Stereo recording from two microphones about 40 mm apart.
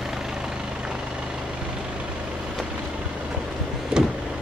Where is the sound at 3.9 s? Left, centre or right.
Right.